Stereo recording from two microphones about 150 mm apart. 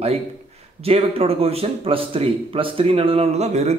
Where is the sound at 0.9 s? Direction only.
40° right (ahead or behind).